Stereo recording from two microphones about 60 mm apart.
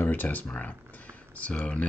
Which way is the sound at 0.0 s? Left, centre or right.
Left.